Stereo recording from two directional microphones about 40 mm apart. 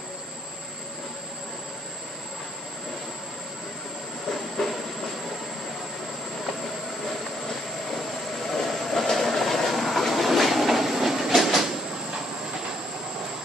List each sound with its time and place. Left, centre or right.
4.3 s train: centre
8.5 s train: centre